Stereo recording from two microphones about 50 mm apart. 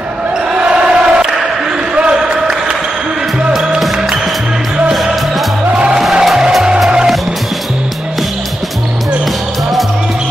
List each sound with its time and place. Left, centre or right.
0.6 s basketball bounce: centre
5.9 s music: centre